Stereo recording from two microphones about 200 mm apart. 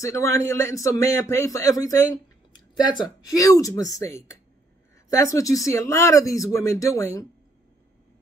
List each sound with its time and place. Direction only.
0.0 s speech: 15° left (ahead or behind)